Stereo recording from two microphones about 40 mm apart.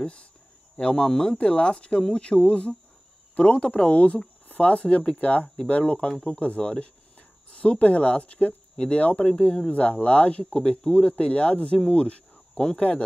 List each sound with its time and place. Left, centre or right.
0.0 s speech: left
9.3 s speech: left
9.7 s speech: left
11.1 s speech: left